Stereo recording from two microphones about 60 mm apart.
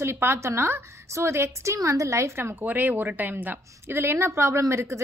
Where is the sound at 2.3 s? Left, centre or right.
Right.